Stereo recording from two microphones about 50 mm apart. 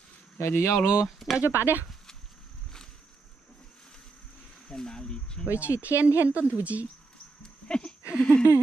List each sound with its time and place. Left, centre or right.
0.4 s speech: left
1.0 s speech: centre
1.4 s speech: right
4.6 s speech: centre
5.6 s speech: right
7.4 s dog: centre
8.2 s a sound: left